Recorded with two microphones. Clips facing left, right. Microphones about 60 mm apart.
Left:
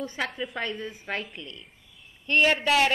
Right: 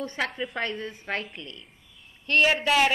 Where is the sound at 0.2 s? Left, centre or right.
Centre.